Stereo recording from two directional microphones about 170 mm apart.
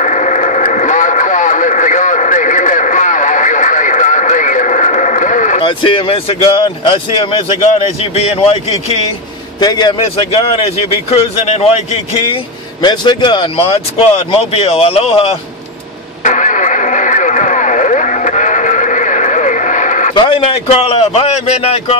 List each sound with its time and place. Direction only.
0.0 s radio: 45° left (ahead or behind)
5.6 s a man's voice: 30° left (ahead or behind)
9.6 s a man's voice: 25° left (ahead or behind)
12.8 s a man's voice: 25° left (ahead or behind)
16.3 s vehicle: 50° left (ahead or behind)
20.2 s a man's voice: 30° left (ahead or behind)